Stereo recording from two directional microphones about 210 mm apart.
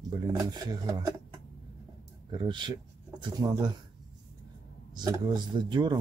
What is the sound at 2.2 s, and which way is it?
Speech, 20° right (ahead or behind).